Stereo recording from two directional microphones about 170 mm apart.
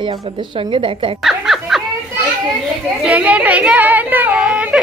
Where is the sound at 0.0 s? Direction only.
30° right (ahead or behind).